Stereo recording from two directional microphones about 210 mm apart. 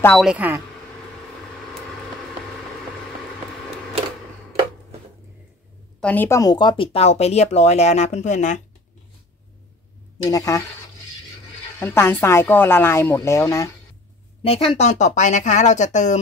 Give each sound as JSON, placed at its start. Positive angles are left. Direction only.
{"t": 0.0, "sound": "speech", "side_deg": 0}
{"t": 5.9, "sound": "speech", "side_deg": 5}
{"t": 10.3, "sound": "speech", "side_deg": 15}
{"t": 11.8, "sound": "speech", "side_deg": 10}
{"t": 14.4, "sound": "speech", "side_deg": 25}